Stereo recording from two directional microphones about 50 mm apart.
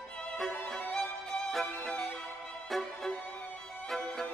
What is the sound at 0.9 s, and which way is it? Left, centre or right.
Music, centre.